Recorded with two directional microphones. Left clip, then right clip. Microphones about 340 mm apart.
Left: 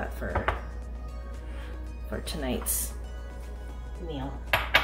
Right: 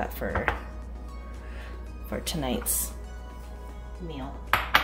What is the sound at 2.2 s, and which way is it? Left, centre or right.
Speech, right.